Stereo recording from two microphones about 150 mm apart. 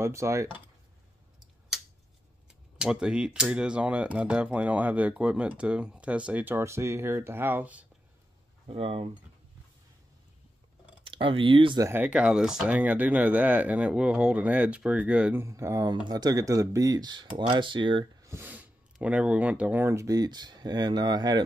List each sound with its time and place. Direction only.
0.0 s speech: 20° right (ahead or behind)
2.8 s speech: 5° right (ahead or behind)
8.6 s speech: 40° right (ahead or behind)
11.1 s speech: 35° right (ahead or behind)
11.8 s speech: 15° right (ahead or behind)
15.4 s speech: 20° right (ahead or behind)
18.2 s speech: 15° right (ahead or behind)